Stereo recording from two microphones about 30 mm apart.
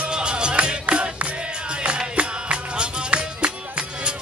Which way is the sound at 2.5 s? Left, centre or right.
Right.